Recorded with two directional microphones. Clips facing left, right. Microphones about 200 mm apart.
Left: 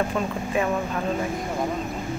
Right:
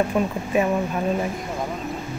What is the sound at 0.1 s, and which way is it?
Speech, 10° right (ahead or behind).